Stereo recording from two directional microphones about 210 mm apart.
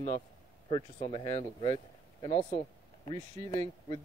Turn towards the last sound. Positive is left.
turn(degrees=20)  # may be behind; listen again after turning